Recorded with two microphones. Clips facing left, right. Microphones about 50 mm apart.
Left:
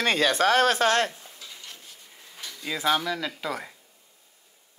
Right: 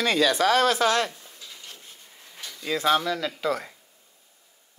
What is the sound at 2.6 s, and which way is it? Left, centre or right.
Speech, centre.